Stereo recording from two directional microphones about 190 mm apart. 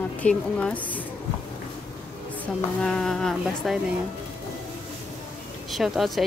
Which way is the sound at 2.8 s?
Centre (ahead or behind).